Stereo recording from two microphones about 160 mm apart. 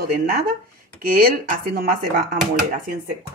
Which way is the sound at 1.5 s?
65° right (ahead or behind).